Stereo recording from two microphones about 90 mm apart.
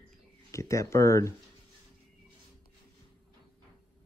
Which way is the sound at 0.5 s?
35° left (ahead or behind).